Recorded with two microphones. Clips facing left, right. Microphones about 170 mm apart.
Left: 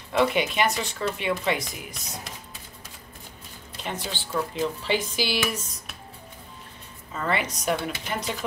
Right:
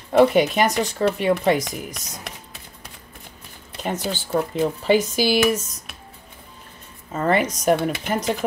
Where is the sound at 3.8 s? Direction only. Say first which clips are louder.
Right 7 dB; 45° right (ahead or behind).